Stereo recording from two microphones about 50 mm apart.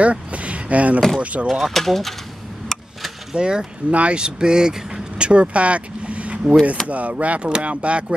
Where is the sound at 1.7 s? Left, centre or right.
Centre.